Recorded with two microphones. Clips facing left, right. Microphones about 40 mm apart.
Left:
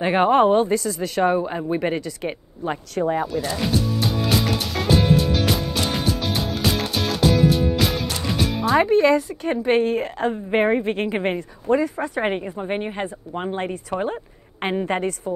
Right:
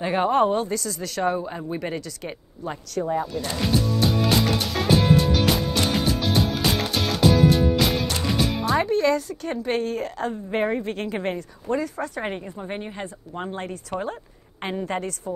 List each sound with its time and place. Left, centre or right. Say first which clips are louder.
0.0 s a woman's voice: left 4 dB; left
3.3 s music: left 2 dB; centre
8.8 s a woman's voice: left 5 dB; centre